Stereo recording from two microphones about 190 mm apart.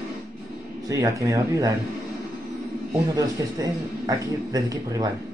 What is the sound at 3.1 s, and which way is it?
Speech, 20° right (ahead or behind).